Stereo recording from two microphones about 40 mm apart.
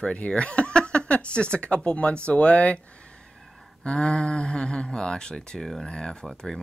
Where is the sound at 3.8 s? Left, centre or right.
Left.